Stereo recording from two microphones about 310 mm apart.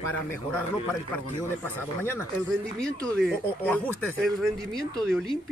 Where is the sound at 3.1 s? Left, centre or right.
Centre.